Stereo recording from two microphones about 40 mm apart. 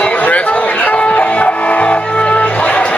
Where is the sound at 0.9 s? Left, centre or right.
Left.